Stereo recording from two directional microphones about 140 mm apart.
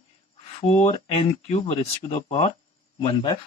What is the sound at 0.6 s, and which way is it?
Speech, 40° left (ahead or behind).